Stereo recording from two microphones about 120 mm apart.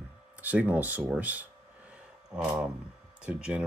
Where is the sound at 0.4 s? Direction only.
15° right (ahead or behind).